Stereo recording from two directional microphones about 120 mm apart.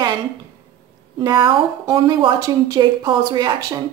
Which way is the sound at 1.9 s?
45° right (ahead or behind).